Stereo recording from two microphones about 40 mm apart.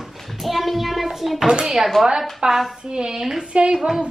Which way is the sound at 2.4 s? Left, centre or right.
Right.